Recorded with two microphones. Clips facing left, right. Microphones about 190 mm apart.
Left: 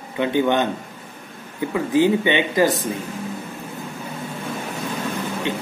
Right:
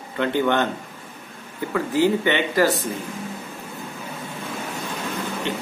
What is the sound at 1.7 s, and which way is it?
Speech, 15° left (ahead or behind).